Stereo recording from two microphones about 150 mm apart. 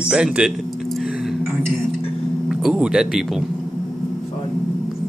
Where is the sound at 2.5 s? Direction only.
5° right (ahead or behind).